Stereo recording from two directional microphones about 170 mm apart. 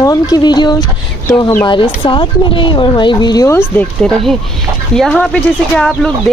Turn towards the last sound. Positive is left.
turn(degrees=5)  # may be behind; listen again after turning